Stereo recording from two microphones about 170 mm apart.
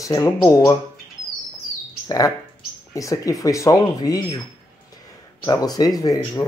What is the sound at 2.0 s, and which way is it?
Speech, 20° left (ahead or behind).